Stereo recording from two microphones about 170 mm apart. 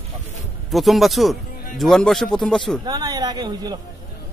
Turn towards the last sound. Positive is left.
turn(degrees=-25)  # may be behind; listen again after turning